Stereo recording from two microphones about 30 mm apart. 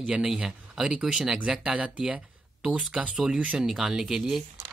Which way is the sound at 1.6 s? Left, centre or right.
Right.